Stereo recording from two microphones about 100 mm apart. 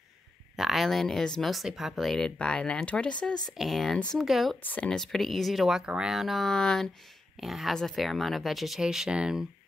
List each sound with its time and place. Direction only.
0.6 s speech: centre (ahead or behind)
3.4 s speech: centre (ahead or behind)
4.6 s speech: 15° left (ahead or behind)
4.9 s speech: 5° left (ahead or behind)